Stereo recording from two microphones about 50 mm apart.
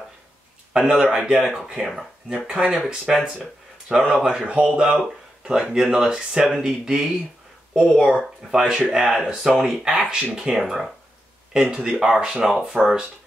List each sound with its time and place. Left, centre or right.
0.7 s speech: centre
8.5 s speech: centre
11.6 s speech: right